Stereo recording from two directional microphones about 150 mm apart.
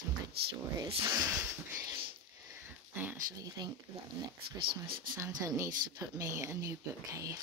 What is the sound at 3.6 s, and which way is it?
Speech, 30° right (ahead or behind).